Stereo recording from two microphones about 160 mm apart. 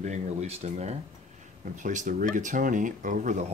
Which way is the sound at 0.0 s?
45° right (ahead or behind).